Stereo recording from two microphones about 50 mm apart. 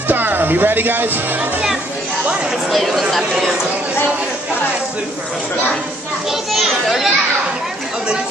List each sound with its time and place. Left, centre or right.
0.1 s speech: right
2.7 s speech: centre
6.5 s children playing: centre